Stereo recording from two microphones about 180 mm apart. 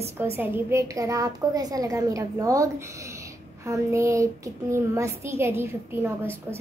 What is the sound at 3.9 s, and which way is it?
A woman's voice, 15° right (ahead or behind).